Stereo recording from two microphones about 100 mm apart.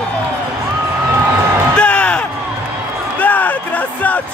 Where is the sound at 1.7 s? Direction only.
10° left (ahead or behind).